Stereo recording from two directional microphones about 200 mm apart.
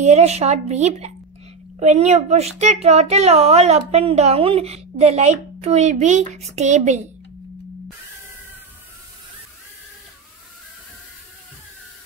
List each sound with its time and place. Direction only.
0.0 s speech: 35° right (ahead or behind)